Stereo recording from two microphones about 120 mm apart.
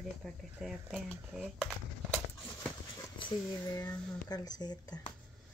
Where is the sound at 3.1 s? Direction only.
35° left (ahead or behind).